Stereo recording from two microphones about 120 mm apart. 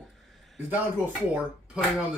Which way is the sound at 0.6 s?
15° right (ahead or behind).